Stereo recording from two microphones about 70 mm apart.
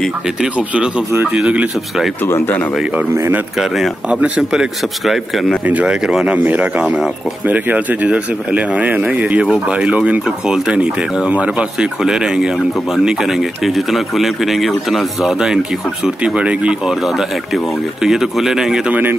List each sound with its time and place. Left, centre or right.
1.3 s speech: centre
2.2 s speech: left
3.5 s speech: centre
5.7 s speech: right
11.5 s speech: centre
18.0 s speech: centre
18.9 s speech: right